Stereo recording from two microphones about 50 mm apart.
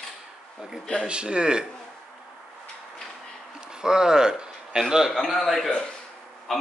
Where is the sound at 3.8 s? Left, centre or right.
Centre.